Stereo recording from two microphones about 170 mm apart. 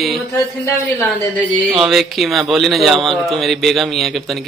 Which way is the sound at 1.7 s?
Centre (ahead or behind).